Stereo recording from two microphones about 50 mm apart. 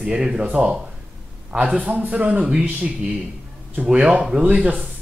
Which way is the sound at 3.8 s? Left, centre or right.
Right.